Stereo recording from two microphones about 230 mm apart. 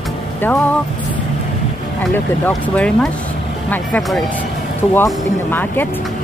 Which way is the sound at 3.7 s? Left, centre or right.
Centre.